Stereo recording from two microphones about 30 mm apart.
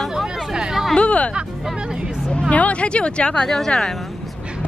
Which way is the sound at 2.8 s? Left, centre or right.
Left.